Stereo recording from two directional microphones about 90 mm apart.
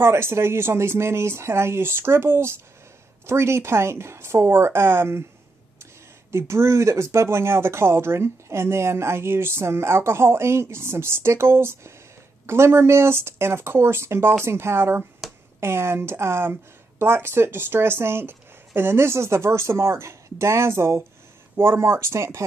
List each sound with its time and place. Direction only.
0.0 s speech: 30° right (ahead or behind)
6.3 s speech: 30° right (ahead or behind)